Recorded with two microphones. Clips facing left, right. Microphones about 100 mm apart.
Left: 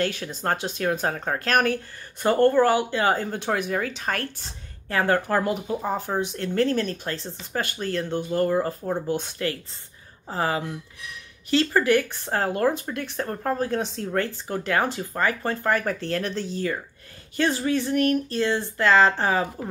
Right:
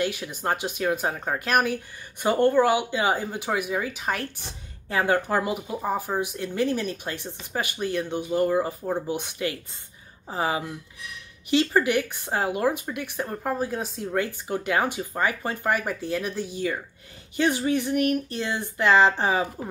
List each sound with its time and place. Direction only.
0.0 s speech: 10° right (ahead or behind)